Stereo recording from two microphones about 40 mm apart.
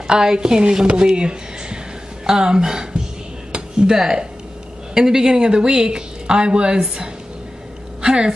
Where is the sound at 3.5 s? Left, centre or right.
Centre.